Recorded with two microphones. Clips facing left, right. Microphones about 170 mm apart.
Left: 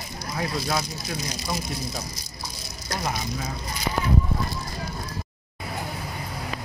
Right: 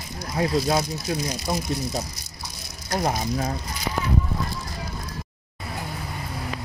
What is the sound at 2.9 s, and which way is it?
Speech, 50° right (ahead or behind).